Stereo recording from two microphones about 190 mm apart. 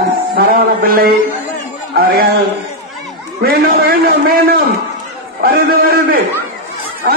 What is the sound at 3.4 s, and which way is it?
A man's voice, 55° right (ahead or behind).